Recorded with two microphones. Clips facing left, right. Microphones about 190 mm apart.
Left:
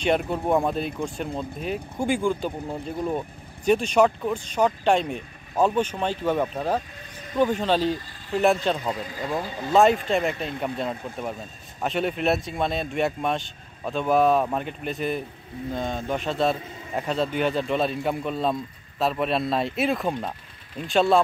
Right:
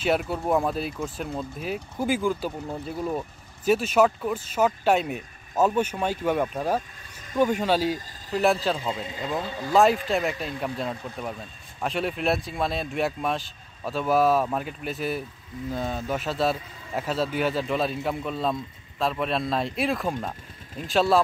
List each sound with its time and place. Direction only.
0.0 s speech: 5° right (ahead or behind)
8.9 s speech: 25° right (ahead or behind)
9.2 s speech: 15° left (ahead or behind)
9.8 s speech: centre (ahead or behind)